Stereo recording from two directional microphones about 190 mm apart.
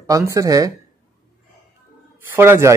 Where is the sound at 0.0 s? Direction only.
15° right (ahead or behind).